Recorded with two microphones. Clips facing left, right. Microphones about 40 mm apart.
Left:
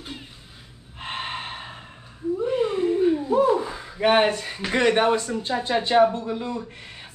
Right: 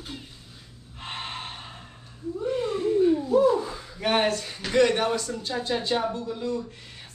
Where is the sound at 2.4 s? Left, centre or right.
Left.